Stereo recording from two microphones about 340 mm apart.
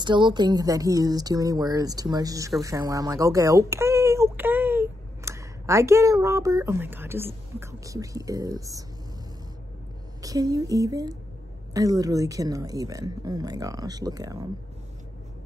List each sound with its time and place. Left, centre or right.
0.0 s speech: centre
10.2 s a woman's voice: centre